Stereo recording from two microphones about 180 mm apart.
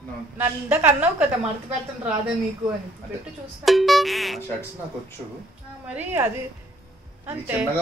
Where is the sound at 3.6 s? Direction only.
Centre (ahead or behind).